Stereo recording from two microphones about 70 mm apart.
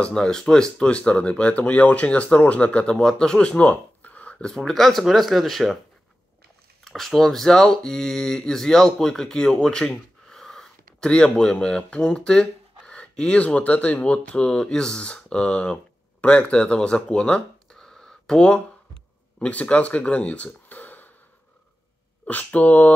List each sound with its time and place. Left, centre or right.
0.0 s speech: centre
3.6 s a sound: left
4.6 s speech: centre
6.8 s speech: centre; by 21.1 s left
22.3 s speech: left